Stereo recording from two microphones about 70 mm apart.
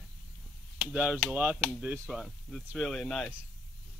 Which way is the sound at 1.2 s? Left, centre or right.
Right.